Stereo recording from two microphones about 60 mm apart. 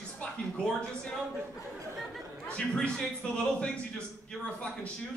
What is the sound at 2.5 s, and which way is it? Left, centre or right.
A man's voice, centre.